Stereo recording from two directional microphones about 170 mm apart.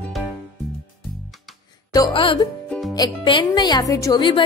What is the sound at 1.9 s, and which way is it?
Speech, 25° left (ahead or behind).